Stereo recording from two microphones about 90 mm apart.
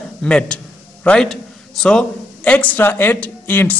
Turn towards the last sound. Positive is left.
turn(degrees=20)  # may be behind; listen again after turning